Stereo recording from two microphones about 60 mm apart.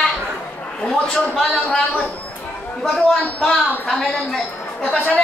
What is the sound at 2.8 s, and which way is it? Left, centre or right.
A woman's voice, centre.